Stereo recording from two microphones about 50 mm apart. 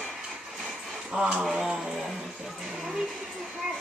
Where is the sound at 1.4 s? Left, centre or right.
Centre.